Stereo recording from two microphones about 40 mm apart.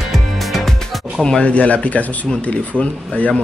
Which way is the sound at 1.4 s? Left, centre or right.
Left.